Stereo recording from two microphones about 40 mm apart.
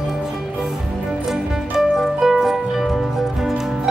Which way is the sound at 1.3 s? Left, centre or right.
Centre.